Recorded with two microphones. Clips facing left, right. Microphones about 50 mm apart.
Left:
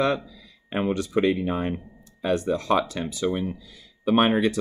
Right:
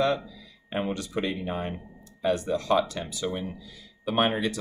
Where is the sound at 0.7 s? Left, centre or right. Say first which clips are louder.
Left 4 dB; left.